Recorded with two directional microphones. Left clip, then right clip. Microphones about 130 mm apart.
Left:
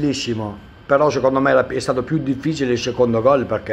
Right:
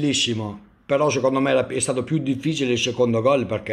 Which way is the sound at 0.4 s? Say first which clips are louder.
Left 4 dB; 15° right (ahead or behind).